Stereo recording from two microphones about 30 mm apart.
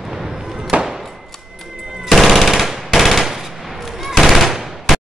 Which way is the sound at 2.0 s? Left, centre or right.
Centre.